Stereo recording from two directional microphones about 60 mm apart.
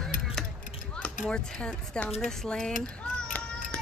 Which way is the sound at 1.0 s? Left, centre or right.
Centre.